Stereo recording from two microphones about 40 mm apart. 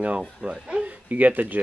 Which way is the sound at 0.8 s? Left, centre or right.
Right.